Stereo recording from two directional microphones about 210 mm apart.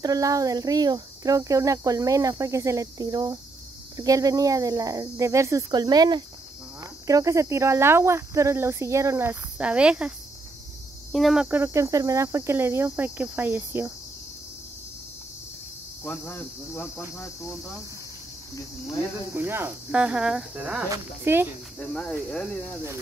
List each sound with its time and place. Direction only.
0.0 s speech: 15° right (ahead or behind)
16.0 s cricket: 10° left (ahead or behind)
19.3 s cricket: 10° right (ahead or behind)
20.9 s speech: 10° right (ahead or behind)
21.7 s cricket: 5° left (ahead or behind)